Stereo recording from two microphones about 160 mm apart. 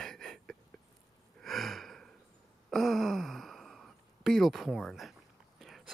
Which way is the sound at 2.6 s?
Centre (ahead or behind).